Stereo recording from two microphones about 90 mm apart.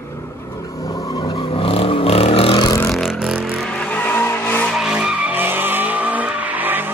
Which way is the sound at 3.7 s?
20° left (ahead or behind).